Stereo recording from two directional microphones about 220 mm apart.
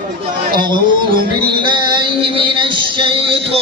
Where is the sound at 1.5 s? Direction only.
20° right (ahead or behind).